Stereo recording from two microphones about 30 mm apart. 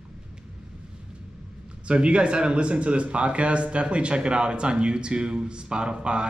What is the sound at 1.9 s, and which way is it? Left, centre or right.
Speech, right.